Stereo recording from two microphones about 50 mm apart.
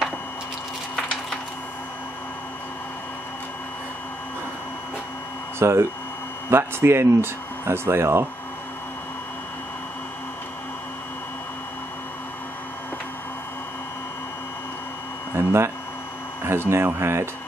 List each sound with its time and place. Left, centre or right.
5.6 s speech: right
15.3 s a sound: right
16.4 s speech: right